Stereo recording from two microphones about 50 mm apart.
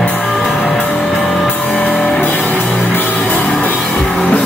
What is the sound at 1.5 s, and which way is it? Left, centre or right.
Music, left.